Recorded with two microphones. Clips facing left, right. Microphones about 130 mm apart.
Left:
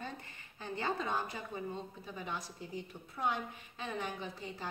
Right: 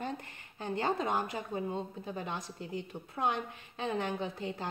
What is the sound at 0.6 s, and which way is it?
Speech, 50° right (ahead or behind).